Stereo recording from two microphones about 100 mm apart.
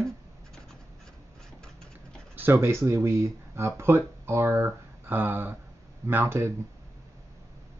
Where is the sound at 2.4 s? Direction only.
25° right (ahead or behind).